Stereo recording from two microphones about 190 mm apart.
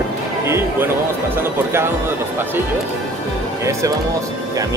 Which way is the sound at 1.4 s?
10° right (ahead or behind).